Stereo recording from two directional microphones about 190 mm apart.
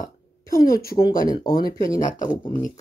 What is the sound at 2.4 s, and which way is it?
Speech, 25° left (ahead or behind).